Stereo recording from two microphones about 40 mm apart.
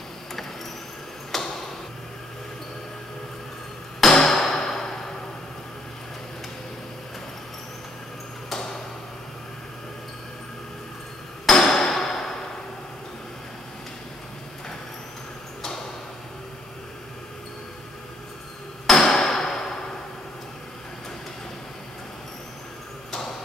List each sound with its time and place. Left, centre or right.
1.3 s tick-tock: centre
4.0 s hammer: centre
11.4 s hammer: centre
18.9 s hammer: centre